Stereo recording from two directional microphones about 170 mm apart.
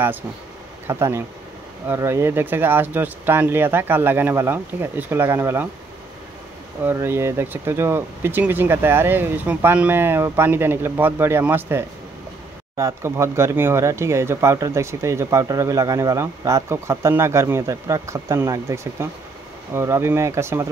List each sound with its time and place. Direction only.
0.8 s speech: 15° right (ahead or behind)
6.8 s speech: 15° right (ahead or behind)